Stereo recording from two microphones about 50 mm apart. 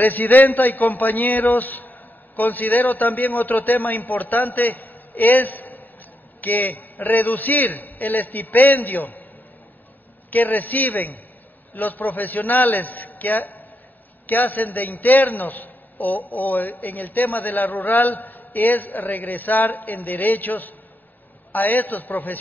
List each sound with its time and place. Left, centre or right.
0.0 s a man's voice: left
10.3 s a man's voice: left